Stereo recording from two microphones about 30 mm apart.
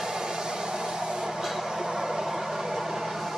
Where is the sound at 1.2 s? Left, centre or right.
Centre.